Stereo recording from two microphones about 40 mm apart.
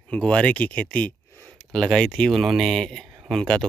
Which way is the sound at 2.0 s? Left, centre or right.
Left.